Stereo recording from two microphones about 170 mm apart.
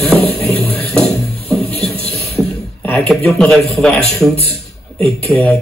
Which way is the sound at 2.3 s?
5° left (ahead or behind).